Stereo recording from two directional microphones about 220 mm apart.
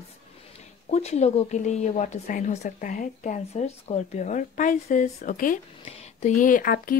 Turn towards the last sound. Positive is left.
turn(degrees=40)  # may be behind; listen again after turning